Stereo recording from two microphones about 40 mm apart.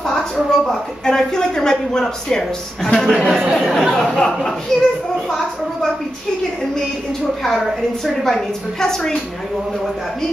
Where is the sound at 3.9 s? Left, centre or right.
Centre.